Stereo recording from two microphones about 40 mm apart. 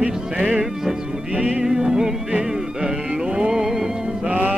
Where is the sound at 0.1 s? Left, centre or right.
Centre.